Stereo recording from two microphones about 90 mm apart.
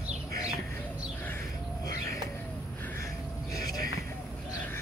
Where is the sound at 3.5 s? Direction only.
40° left (ahead or behind).